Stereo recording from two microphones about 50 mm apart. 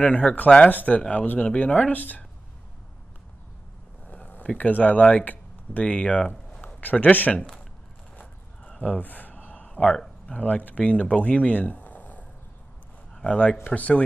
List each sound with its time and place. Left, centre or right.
0.0 s speech: left
4.1 s a sound: left
4.6 s speech: left
5.9 s speech: left
6.6 s speech: left
8.2 s a sound: left
10.2 s speech: left
13.1 s speech: left